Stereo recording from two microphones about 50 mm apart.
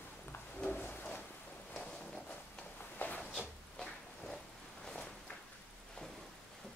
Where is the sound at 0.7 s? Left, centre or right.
Left.